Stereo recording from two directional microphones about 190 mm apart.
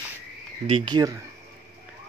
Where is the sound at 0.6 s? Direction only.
25° right (ahead or behind).